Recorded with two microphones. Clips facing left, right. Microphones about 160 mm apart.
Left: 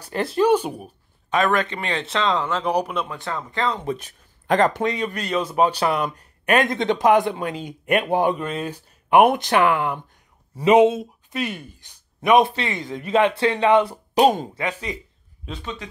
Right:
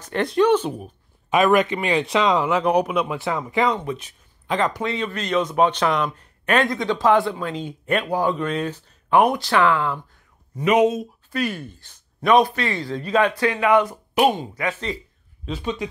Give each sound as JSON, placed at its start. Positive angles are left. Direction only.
{"t": 0.1, "sound": "speech", "side_deg": 5}
{"t": 1.3, "sound": "speech", "side_deg": -15}
{"t": 1.8, "sound": "speech", "side_deg": -5}
{"t": 2.2, "sound": "speech", "side_deg": -15}
{"t": 2.7, "sound": "speech", "side_deg": 0}
{"t": 3.3, "sound": "speech", "side_deg": -15}
{"t": 3.8, "sound": "speech", "side_deg": 45}
{"t": 4.9, "sound": "speech", "side_deg": 10}
{"t": 8.4, "sound": "a man's voice", "side_deg": 5}
{"t": 10.6, "sound": "a man's voice", "side_deg": 30}
{"t": 14.5, "sound": "a man's voice", "side_deg": 25}
{"t": 15.6, "sound": "speech", "side_deg": -15}